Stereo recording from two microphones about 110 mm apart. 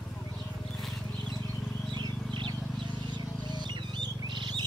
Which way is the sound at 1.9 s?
45° right (ahead or behind).